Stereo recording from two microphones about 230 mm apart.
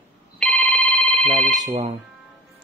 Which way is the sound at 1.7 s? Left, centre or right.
Right.